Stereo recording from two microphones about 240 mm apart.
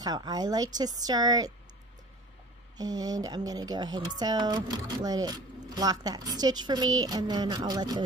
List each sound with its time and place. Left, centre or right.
0.0 s speech: centre
2.8 s speech: centre